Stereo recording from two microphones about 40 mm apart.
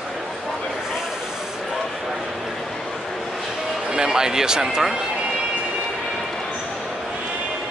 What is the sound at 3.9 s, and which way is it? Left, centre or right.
Speech, centre.